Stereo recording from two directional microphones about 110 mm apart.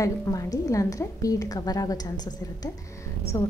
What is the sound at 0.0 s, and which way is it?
A woman's voice, 30° left (ahead or behind).